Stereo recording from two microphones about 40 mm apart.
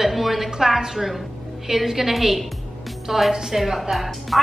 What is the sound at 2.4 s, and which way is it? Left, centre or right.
Music, centre.